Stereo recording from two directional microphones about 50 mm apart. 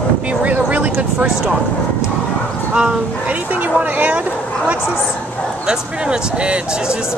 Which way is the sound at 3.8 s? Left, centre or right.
Right.